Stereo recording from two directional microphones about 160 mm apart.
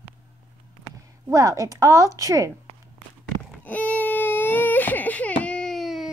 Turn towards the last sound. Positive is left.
turn(degrees=0)  # may be behind; listen again after turning